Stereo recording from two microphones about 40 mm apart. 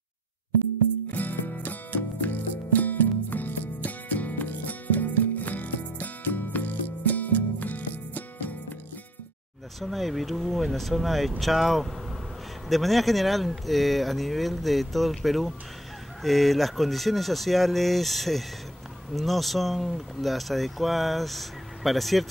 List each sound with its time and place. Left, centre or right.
1.1 s music: left
9.8 s speech: centre